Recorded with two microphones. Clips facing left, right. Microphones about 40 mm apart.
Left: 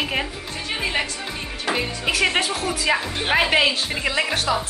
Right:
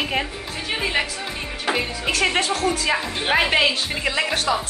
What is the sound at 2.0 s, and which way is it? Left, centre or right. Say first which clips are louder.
Speech: left 1 dB; centre.